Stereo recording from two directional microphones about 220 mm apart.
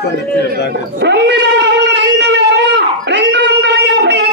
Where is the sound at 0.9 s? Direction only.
55° right (ahead or behind).